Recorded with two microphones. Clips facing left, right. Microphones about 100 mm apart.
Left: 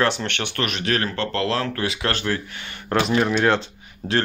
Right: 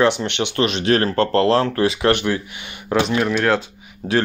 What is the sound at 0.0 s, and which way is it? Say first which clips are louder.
Speech: right 5 dB; 15° right (ahead or behind).